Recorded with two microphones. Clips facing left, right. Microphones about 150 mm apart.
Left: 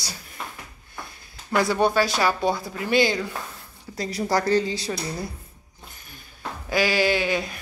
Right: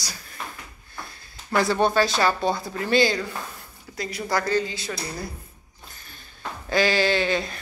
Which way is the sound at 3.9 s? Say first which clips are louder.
Left 3 dB; 35° left (ahead or behind).